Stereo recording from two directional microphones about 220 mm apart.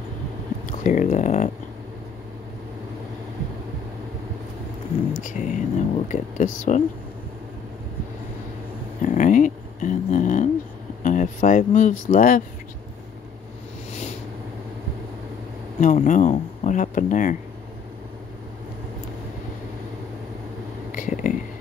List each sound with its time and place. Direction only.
0.7 s speech: 35° left (ahead or behind)
5.2 s speech: 35° left (ahead or behind)
9.0 s a sound: 35° left (ahead or behind)
11.0 s speech: 35° left (ahead or behind)
15.8 s speech: 35° left (ahead or behind)
20.9 s whispering: 35° left (ahead or behind)